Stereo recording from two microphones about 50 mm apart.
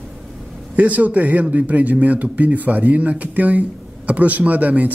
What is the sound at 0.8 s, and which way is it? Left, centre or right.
Speech, right.